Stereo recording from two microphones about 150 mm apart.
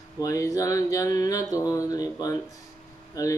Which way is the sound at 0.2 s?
20° left (ahead or behind).